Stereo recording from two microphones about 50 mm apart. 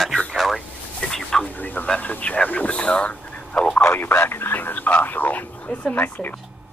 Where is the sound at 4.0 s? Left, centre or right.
Left.